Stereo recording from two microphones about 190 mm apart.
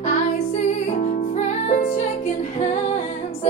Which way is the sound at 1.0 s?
45° left (ahead or behind).